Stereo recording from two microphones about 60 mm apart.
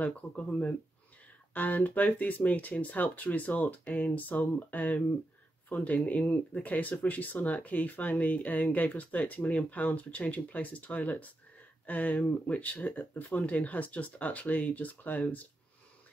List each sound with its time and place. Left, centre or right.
0.0 s speech: left